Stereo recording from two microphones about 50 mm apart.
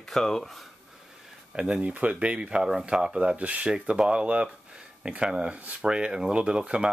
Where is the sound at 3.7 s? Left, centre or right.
Centre.